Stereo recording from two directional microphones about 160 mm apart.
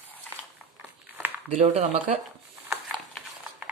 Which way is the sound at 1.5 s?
45° right (ahead or behind).